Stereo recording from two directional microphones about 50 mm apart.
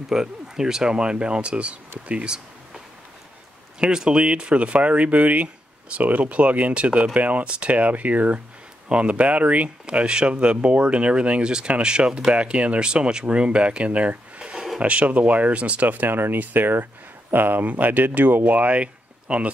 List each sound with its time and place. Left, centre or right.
0.1 s speech: centre
3.8 s speech: centre